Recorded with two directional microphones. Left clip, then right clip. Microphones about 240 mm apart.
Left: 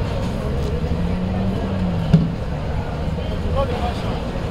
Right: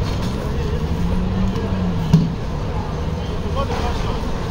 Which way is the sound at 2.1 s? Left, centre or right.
Right.